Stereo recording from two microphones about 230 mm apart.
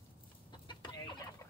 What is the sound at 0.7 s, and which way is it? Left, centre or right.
Chicken, centre.